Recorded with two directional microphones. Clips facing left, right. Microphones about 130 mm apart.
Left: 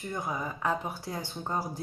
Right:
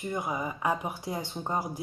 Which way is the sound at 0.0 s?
20° right (ahead or behind).